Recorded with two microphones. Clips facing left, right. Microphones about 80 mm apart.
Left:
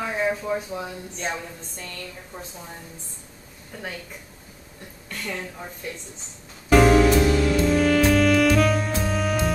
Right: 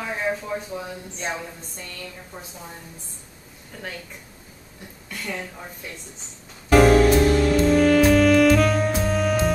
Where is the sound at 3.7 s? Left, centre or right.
Centre.